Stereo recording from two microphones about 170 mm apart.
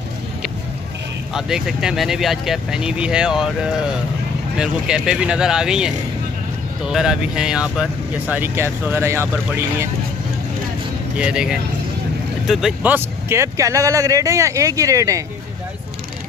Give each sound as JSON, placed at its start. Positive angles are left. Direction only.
{"t": 1.3, "sound": "speech", "side_deg": -5}
{"t": 11.1, "sound": "speech", "side_deg": -5}